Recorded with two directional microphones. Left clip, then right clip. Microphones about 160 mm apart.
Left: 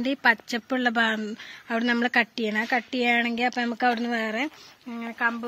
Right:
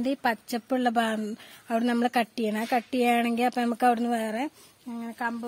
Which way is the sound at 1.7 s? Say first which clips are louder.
Left 2 dB; 45° right (ahead or behind).